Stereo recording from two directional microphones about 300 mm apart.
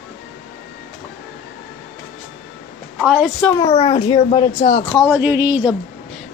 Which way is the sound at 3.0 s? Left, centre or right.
Centre.